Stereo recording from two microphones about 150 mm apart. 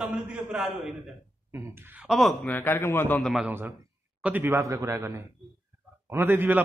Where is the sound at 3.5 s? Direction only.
15° right (ahead or behind).